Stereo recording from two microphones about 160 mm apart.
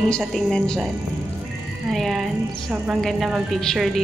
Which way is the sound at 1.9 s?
Centre (ahead or behind).